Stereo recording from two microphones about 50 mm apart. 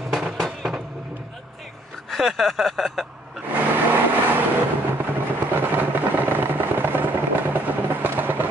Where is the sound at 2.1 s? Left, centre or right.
Centre.